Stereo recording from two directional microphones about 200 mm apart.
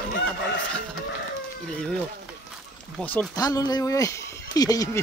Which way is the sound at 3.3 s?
20° left (ahead or behind).